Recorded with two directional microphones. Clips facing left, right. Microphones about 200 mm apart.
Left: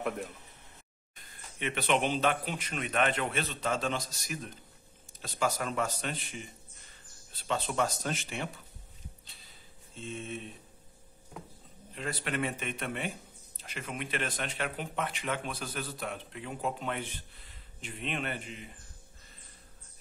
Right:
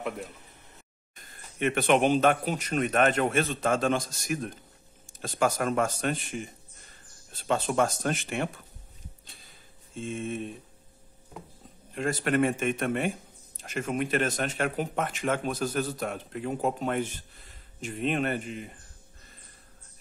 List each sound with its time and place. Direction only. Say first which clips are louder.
1.6 s speech: right 7 dB; 50° right (ahead or behind)
9.9 s speech: right 7 dB; 50° right (ahead or behind)
11.9 s speech: right 9 dB; 45° right (ahead or behind)